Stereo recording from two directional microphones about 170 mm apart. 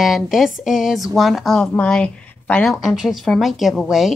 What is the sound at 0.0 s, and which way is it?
Speech, centre (ahead or behind).